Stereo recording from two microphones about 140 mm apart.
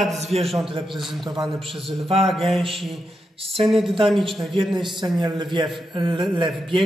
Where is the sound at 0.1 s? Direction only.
50° right (ahead or behind).